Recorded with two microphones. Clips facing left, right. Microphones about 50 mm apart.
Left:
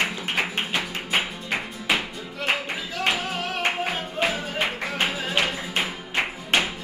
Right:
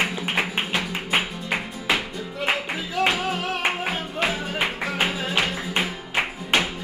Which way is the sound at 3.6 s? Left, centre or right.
Centre.